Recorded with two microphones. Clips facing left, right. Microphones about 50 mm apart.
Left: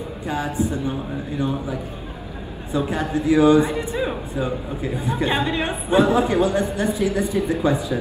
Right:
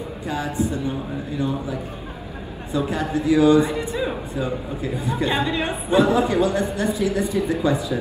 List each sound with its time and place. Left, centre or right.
0.3 s a man's voice: left
2.7 s a man's voice: left
4.0 s a man's voice: centre; by 7.7 s left